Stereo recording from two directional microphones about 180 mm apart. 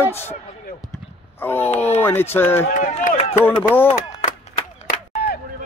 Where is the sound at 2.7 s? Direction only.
45° left (ahead or behind).